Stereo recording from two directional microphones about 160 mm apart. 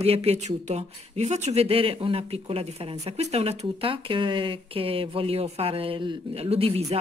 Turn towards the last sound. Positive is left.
turn(degrees=-40)  # may be behind; listen again after turning